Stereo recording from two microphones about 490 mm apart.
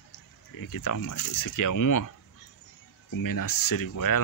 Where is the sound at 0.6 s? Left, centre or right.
Left.